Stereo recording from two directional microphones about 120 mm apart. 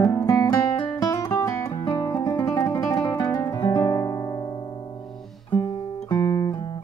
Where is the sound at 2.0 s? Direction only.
35° left (ahead or behind).